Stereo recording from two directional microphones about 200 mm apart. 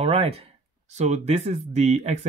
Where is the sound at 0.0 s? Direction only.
30° right (ahead or behind).